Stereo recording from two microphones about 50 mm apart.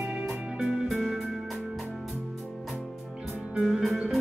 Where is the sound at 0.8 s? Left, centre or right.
Centre.